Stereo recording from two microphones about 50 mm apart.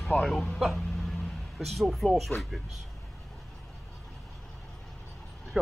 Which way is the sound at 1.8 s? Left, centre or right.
Centre.